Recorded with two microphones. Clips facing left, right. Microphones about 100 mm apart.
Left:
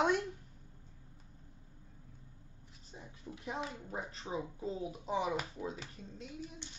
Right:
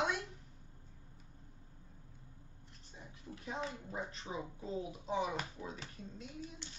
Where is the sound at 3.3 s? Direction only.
15° left (ahead or behind).